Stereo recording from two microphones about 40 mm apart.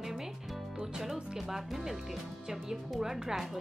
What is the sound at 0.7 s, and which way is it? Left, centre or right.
Music, centre.